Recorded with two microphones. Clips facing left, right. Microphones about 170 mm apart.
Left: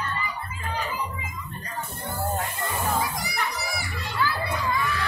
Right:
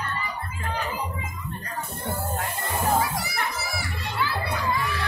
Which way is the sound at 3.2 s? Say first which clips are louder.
Even; centre (ahead or behind).